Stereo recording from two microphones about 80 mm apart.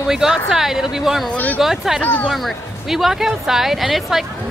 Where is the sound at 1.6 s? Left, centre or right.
Centre.